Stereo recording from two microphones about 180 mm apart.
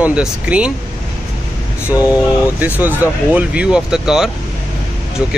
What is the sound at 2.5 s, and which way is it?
Speech, 10° right (ahead or behind).